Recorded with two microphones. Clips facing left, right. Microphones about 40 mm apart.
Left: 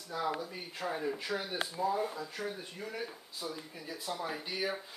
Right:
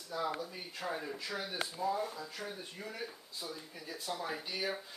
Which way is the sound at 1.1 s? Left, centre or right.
Centre.